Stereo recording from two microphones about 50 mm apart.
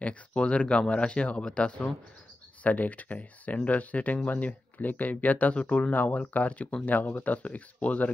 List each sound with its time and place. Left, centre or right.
0.0 s speech: left